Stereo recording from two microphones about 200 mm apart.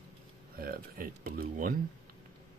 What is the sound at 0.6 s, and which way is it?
Speech, 45° right (ahead or behind).